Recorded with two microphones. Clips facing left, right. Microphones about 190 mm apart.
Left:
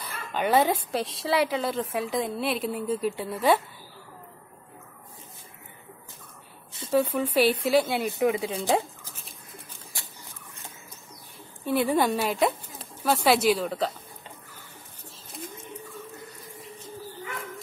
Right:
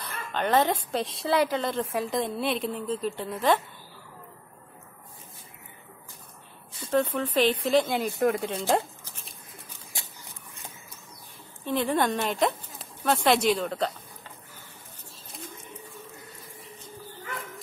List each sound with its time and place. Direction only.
0.0 s a woman's voice: 10° left (ahead or behind)
6.9 s speech: 10° left (ahead or behind)
9.9 s rodents: 20° right (ahead or behind)
11.6 s speech: 10° left (ahead or behind)